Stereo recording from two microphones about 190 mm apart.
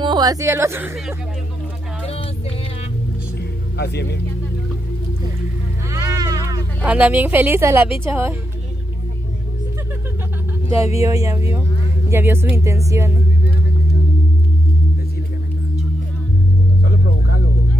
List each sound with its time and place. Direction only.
0.0 s speech: 20° right (ahead or behind)
3.3 s music: 60° left (ahead or behind)
5.9 s a sound: 15° right (ahead or behind)
6.8 s a woman's voice: 5° right (ahead or behind)
11.0 s a woman's voice: 15° right (ahead or behind)
16.8 s a sound: 55° left (ahead or behind)